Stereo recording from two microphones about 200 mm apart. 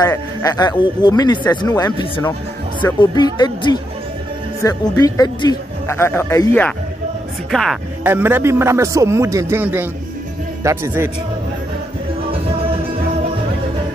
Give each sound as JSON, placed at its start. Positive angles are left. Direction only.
{"t": 0.0, "sound": "speech", "side_deg": 15}
{"t": 8.0, "sound": "a man's voice", "side_deg": -10}